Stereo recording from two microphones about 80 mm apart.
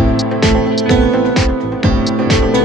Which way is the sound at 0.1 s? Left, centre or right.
Centre.